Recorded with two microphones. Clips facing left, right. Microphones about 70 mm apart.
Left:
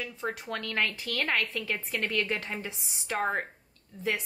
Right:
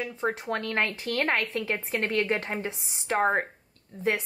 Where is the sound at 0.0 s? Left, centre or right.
Right.